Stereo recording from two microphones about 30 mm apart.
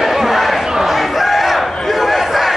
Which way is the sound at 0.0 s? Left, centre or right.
Centre.